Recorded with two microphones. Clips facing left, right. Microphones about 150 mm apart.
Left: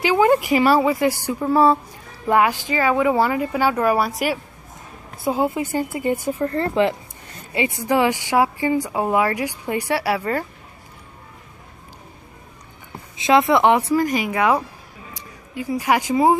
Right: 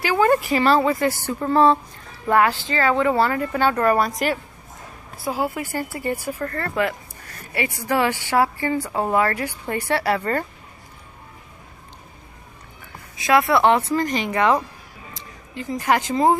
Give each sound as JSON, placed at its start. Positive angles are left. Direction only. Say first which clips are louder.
{"t": 0.0, "sound": "speech", "louder": "left 2 dB", "side_deg": 15}
{"t": 5.2, "sound": "speech", "louder": "left 4 dB", "side_deg": 20}
{"t": 13.2, "sound": "speech", "louder": "left 2 dB", "side_deg": 20}